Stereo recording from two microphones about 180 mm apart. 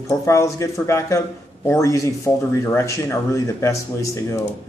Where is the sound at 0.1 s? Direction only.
15° left (ahead or behind).